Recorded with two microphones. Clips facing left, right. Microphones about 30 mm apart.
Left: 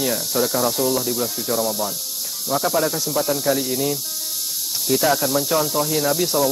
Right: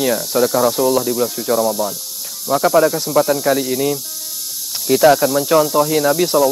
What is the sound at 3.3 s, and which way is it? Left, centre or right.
Speech, centre.